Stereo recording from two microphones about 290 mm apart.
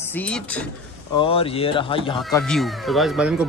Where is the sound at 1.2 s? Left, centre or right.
Centre.